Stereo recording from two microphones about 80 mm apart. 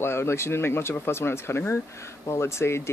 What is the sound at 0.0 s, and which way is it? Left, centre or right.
Speech, left.